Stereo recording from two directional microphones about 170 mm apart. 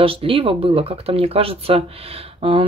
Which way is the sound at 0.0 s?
35° right (ahead or behind).